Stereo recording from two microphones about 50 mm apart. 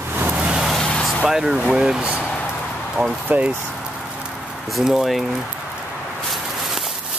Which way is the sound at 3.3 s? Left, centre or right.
Right.